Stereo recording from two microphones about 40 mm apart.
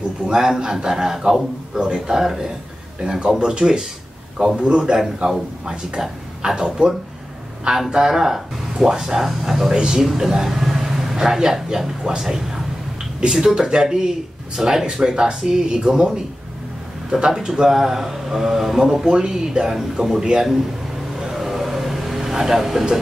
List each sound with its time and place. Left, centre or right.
0.2 s a man's voice: centre
4.9 s a man's voice: centre
21.2 s vehicle: centre